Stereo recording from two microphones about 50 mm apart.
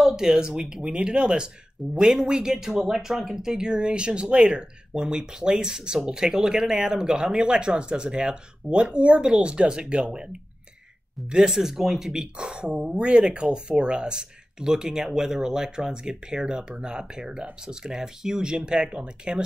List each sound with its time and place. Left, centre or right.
0.0 s speech: centre
1.8 s speech: centre
2.2 s speech: centre